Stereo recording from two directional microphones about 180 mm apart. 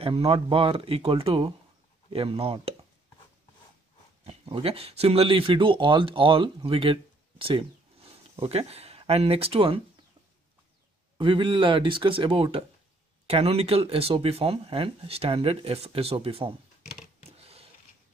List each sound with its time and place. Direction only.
0.0 s speech: 30° right (ahead or behind)
4.3 s speech: 30° right (ahead or behind)
11.1 s speech: 25° right (ahead or behind)
17.4 s a sound: 35° right (ahead or behind)